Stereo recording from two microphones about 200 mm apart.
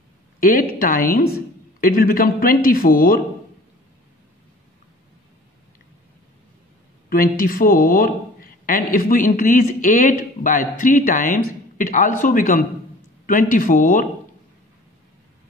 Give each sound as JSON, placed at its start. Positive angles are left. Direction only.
{"t": 0.4, "sound": "speech", "side_deg": 45}
{"t": 7.1, "sound": "speech", "side_deg": 45}